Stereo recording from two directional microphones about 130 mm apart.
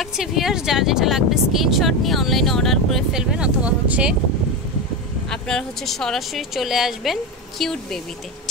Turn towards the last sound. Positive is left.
turn(degrees=5)  # may be behind; listen again after turning